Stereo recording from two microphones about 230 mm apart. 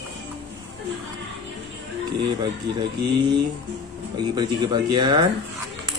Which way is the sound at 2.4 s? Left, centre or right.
Centre.